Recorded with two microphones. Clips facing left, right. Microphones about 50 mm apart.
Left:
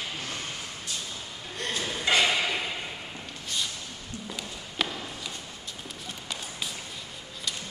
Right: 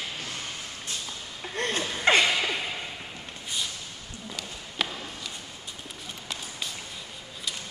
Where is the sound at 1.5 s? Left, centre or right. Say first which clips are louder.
Right 4 dB; right.